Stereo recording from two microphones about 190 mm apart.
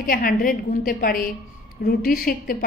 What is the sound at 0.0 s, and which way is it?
A woman's voice, 50° left (ahead or behind).